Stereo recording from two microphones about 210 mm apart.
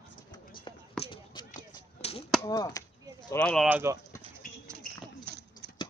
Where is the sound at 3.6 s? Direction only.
10° right (ahead or behind).